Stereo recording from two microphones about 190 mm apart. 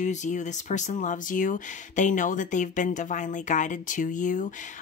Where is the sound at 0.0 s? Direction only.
40° left (ahead or behind).